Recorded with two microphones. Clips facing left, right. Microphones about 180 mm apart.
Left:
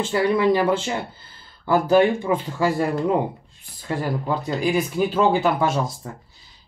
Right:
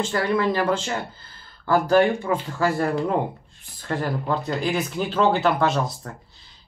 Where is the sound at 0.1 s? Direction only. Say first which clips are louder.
Left 7 dB; 15° left (ahead or behind).